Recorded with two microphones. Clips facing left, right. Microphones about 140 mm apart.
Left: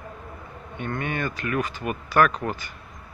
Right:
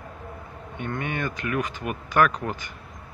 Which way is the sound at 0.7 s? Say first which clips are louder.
Left 1 dB; 15° right (ahead or behind).